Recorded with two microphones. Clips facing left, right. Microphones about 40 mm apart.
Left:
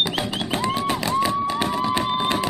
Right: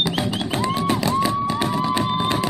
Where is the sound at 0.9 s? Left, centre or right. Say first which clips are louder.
Right 1 dB; left.